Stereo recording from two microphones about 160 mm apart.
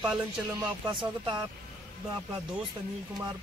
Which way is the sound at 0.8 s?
30° right (ahead or behind).